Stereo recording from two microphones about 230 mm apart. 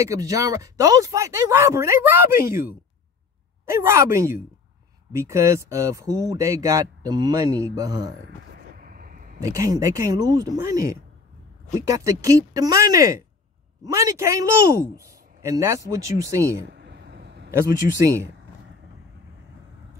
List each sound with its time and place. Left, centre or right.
0.0 s speech: centre
8.5 s vehicle: right
9.4 s speech: centre
16.7 s a sound: right
17.5 s speech: centre